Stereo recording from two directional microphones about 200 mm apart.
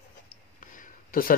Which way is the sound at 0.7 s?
45° left (ahead or behind).